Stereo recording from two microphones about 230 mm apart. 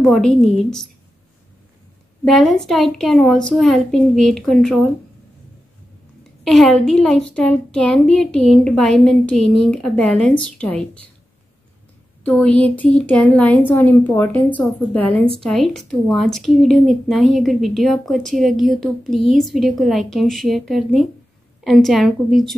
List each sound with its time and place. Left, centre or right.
0.0 s a woman's voice: centre
2.2 s a woman's voice: centre
6.4 s a woman's voice: centre
12.2 s a woman's voice: centre